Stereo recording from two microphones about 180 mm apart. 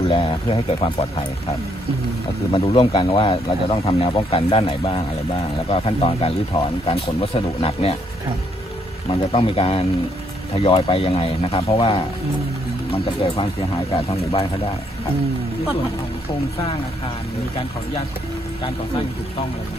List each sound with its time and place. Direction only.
0.0 s speech: 30° left (ahead or behind)
2.5 s speech: 30° left (ahead or behind)
9.1 s speech: 30° left (ahead or behind)